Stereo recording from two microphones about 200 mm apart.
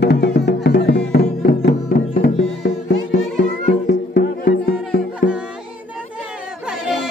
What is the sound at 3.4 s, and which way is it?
Music, 55° left (ahead or behind).